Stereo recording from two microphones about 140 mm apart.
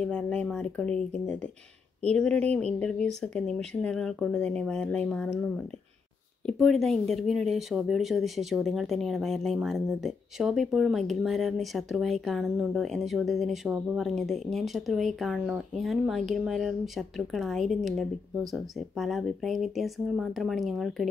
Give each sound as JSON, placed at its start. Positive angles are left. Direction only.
{"t": 0.0, "sound": "speech", "side_deg": 5}
{"t": 6.4, "sound": "speech", "side_deg": 0}